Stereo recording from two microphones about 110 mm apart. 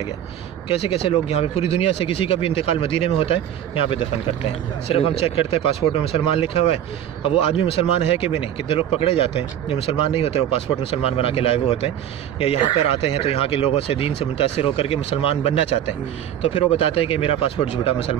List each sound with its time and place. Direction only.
0.7 s speech: 60° left (ahead or behind)
13.2 s speech: 60° left (ahead or behind)